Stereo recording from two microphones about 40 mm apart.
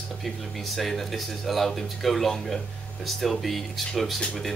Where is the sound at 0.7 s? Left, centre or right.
Centre.